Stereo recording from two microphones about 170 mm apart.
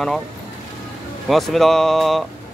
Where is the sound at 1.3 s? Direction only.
Centre (ahead or behind).